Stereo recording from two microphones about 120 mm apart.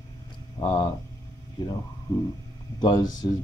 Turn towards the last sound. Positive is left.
turn(degrees=30)  # may be behind; listen again after turning